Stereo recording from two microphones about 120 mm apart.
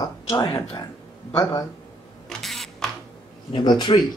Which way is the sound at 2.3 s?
Centre (ahead or behind).